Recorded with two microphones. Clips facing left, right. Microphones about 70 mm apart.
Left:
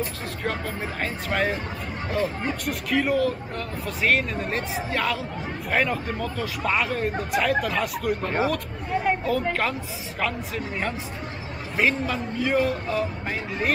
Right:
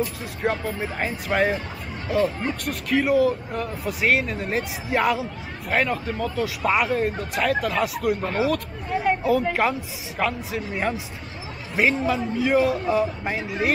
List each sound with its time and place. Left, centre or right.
0.4 s speech: centre
4.8 s speech: centre
5.7 s speech: centre